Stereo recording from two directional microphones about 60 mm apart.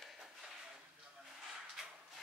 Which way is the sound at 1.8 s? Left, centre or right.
Centre.